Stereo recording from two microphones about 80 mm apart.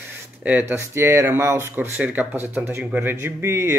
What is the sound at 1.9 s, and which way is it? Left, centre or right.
Speech, centre.